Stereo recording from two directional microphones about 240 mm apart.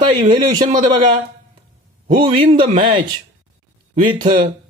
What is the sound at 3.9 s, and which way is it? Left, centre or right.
Speech, right.